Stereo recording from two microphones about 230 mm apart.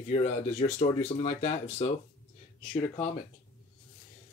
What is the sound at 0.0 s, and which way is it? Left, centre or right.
Speech, left.